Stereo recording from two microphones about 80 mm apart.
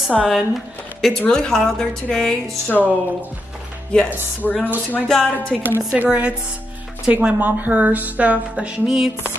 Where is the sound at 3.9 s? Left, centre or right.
Centre.